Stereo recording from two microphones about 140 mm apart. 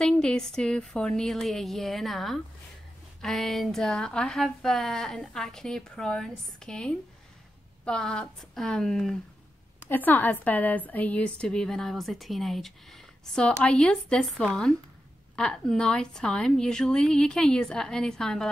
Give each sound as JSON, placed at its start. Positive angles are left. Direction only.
{"t": 0.0, "sound": "a woman's voice", "side_deg": 5}